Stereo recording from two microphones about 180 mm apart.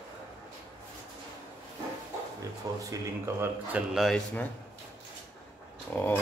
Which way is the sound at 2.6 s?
20° right (ahead or behind).